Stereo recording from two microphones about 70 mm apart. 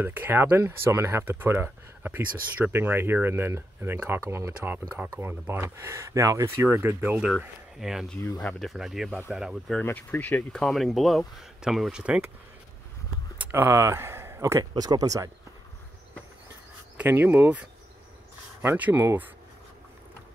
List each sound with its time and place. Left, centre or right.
0.0 s speech: right
4.6 s speech: right
5.8 s speech: right
7.2 s speech: centre
9.8 s speech: left
10.5 s speech: centre
13.5 s speech: right
14.6 s speech: right
16.9 s speech: right
18.8 s speech: right